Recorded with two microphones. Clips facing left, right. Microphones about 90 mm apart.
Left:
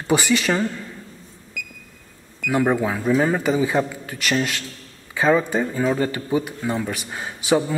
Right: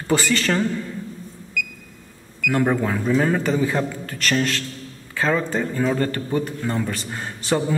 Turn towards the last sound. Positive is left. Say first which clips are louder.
# left 2 dB
turn(degrees=10)  # may be behind; listen again after turning